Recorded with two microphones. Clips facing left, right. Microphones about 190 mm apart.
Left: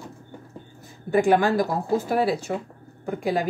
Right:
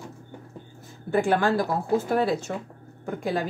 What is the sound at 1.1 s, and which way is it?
A woman's voice, 15° left (ahead or behind).